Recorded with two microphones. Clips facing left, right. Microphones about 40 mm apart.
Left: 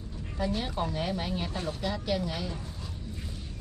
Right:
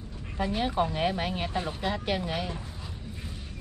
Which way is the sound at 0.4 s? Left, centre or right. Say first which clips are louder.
Right 4 dB; right.